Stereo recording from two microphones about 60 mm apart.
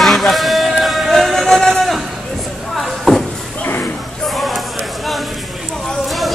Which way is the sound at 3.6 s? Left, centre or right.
Left.